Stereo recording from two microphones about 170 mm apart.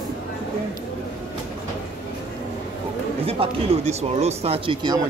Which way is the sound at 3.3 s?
35° right (ahead or behind).